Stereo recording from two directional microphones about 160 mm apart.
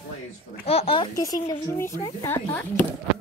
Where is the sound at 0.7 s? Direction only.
35° left (ahead or behind).